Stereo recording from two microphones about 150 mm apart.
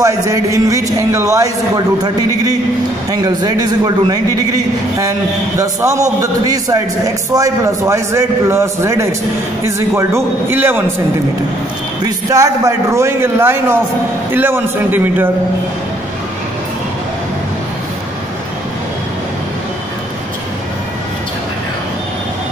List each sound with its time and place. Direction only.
0.0 s a man's voice: 20° right (ahead or behind)
3.1 s a man's voice: 25° right (ahead or behind)
5.6 s a man's voice: 20° right (ahead or behind)
12.3 s a man's voice: 20° right (ahead or behind)